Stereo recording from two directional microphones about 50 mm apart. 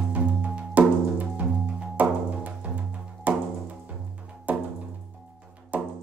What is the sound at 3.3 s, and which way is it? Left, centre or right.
Music, right.